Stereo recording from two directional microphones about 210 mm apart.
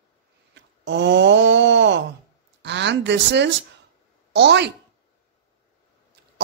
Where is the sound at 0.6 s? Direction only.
55° right (ahead or behind).